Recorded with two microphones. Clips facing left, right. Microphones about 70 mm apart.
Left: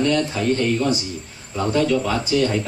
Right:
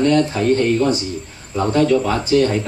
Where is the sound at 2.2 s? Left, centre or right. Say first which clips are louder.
Right 5 dB; right.